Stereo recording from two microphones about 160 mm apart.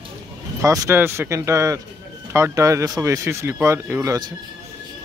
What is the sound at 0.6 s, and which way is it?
Speech, 20° right (ahead or behind).